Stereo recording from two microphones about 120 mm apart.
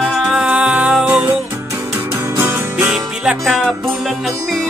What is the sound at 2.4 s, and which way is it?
Music, 20° right (ahead or behind).